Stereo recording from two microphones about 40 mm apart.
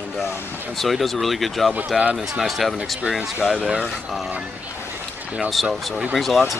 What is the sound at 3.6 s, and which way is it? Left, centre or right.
Speech, right.